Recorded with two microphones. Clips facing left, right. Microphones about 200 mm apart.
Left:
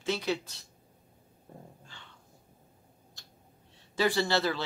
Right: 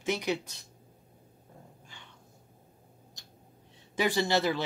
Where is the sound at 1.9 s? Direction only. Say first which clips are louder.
Even; 15° right (ahead or behind).